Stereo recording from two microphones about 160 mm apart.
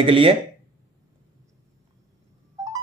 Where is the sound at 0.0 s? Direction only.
35° right (ahead or behind).